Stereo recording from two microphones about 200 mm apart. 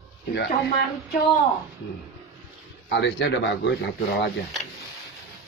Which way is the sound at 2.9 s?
60° left (ahead or behind).